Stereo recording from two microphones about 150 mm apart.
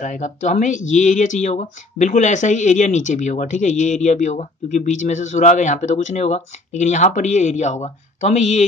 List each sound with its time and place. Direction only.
0.0 s speech: 55° left (ahead or behind)